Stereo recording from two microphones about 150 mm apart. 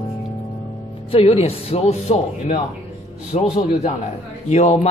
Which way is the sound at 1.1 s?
45° left (ahead or behind).